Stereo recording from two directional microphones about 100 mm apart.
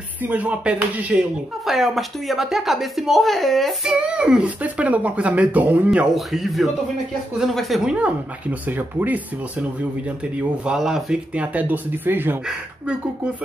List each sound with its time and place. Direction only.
0.2 s speech: 15° right (ahead or behind)
1.7 s a woman's voice: centre (ahead or behind)
3.8 s speech: 10° right (ahead or behind)
5.9 s a woman's voice: 5° right (ahead or behind)
7.9 s speech: 15° right (ahead or behind)
12.4 s speech: 10° right (ahead or behind)